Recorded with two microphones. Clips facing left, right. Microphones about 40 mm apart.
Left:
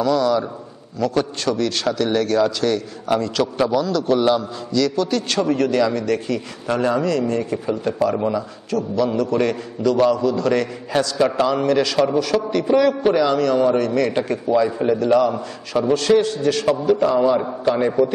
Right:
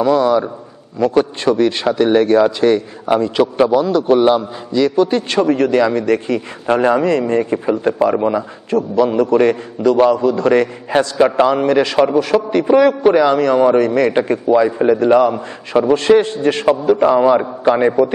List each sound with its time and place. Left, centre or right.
0.0 s a man's voice: right